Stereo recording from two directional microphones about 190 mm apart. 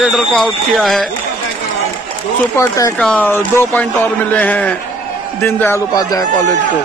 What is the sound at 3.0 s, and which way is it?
A man's voice, 5° left (ahead or behind).